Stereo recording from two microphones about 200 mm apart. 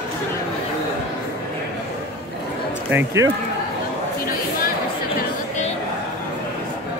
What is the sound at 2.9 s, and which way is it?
Speech, 15° right (ahead or behind).